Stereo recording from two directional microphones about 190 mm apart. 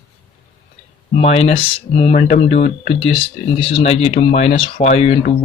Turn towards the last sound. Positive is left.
turn(degrees=35)  # may be behind; listen again after turning